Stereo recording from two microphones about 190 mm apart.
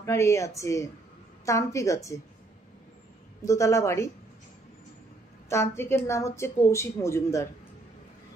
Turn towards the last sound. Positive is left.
turn(degrees=15)  # may be behind; listen again after turning